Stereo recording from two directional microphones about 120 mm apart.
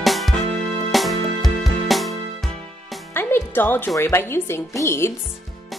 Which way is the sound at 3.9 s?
25° left (ahead or behind).